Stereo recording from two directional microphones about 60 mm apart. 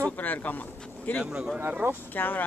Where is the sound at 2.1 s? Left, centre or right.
Left.